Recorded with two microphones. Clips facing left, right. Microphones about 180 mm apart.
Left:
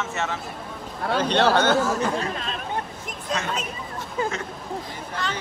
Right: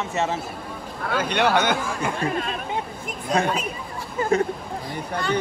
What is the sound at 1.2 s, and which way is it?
Speech, 10° right (ahead or behind).